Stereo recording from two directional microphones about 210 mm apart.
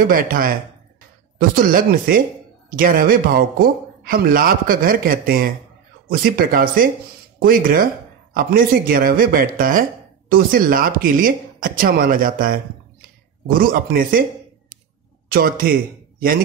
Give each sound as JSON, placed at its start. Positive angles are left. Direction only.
{"t": 0.0, "sound": "a man's voice", "side_deg": -45}
{"t": 15.3, "sound": "a man's voice", "side_deg": -45}